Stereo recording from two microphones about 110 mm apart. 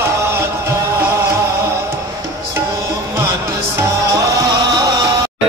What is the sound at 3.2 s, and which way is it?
Music, 25° right (ahead or behind).